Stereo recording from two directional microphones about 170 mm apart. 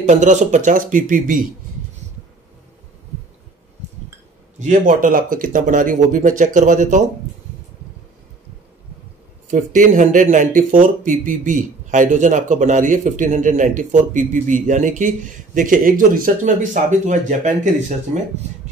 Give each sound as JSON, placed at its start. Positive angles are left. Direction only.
{"t": 0.0, "sound": "speech", "side_deg": -45}
{"t": 4.6, "sound": "speech", "side_deg": -50}
{"t": 9.5, "sound": "speech", "side_deg": -50}